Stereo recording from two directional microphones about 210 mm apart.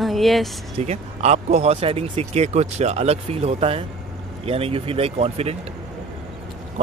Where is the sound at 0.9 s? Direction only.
30° right (ahead or behind).